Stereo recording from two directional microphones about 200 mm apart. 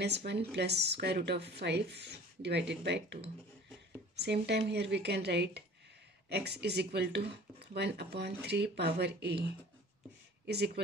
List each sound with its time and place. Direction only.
0.0 s a woman's voice: 55° right (ahead or behind)
4.2 s a woman's voice: 55° right (ahead or behind)
10.4 s speech: 55° right (ahead or behind)